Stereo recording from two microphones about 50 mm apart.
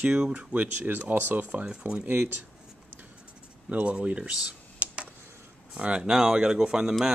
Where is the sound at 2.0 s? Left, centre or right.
Right.